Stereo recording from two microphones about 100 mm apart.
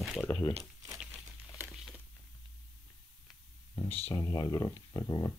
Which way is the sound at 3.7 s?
15° left (ahead or behind).